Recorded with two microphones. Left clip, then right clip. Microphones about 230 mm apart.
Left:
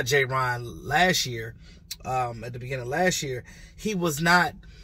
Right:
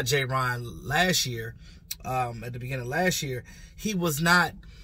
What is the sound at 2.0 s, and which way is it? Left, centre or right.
Speech, centre.